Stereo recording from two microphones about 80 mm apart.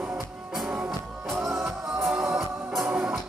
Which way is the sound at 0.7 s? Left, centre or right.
Centre.